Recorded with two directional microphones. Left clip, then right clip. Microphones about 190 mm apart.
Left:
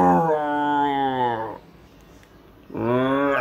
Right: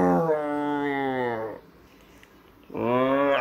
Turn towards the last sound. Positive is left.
turn(degrees=20)  # may be behind; listen again after turning